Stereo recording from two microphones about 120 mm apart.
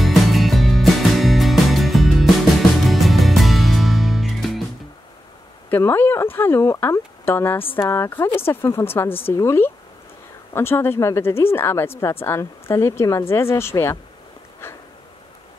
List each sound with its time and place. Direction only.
0.0 s music: centre (ahead or behind)
5.7 s speech: 20° left (ahead or behind)
14.6 s a sound: 20° left (ahead or behind)